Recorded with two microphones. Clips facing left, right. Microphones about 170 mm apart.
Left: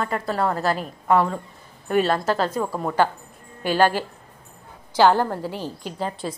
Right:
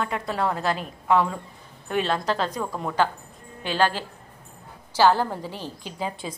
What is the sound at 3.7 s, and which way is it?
Speech, 50° left (ahead or behind).